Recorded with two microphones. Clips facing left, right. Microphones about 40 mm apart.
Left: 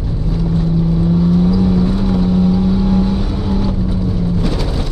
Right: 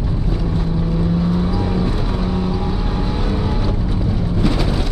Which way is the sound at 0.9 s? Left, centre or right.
Centre.